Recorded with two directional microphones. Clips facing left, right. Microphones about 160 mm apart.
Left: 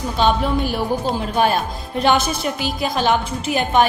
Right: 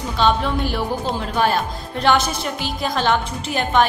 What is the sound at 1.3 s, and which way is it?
A woman's voice, 15° left (ahead or behind).